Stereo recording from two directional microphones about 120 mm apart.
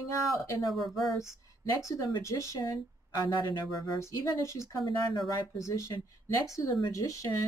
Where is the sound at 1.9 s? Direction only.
25° left (ahead or behind).